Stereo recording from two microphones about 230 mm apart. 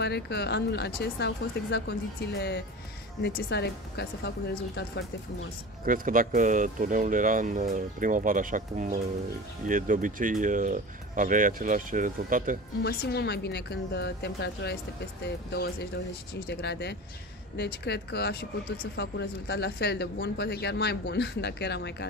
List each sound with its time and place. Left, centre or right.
0.0 s speech: left
5.9 s speech: right
12.8 s speech: left